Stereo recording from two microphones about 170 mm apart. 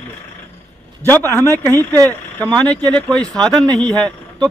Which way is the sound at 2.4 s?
5° left (ahead or behind).